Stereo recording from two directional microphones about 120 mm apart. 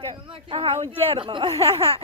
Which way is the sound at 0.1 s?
50° right (ahead or behind).